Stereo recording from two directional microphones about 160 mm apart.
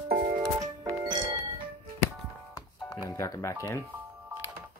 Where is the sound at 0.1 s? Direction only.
65° right (ahead or behind).